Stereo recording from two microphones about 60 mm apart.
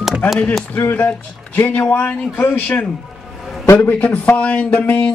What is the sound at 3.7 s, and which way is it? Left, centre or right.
Speech, left.